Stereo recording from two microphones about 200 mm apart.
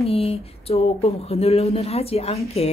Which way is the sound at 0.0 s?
30° left (ahead or behind).